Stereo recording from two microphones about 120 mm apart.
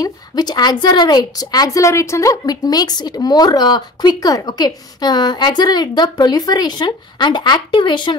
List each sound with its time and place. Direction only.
0.0 s a woman's voice: 35° left (ahead or behind)